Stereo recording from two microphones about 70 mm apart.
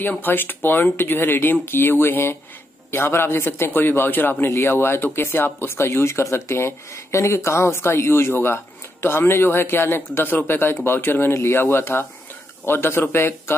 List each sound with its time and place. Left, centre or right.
0.0 s a man's voice: left